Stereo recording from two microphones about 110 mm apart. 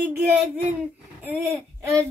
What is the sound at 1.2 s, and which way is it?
Speech, 15° right (ahead or behind).